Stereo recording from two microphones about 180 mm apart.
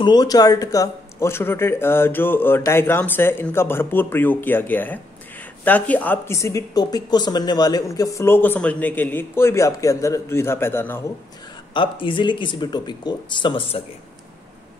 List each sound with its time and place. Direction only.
0.0 s a woman's voice: 20° left (ahead or behind)
11.7 s speech: 30° left (ahead or behind)